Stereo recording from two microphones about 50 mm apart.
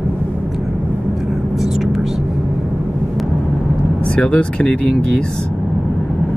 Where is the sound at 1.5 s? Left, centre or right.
Centre.